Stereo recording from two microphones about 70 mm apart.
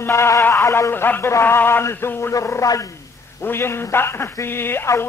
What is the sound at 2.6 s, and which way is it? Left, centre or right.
Speech, left.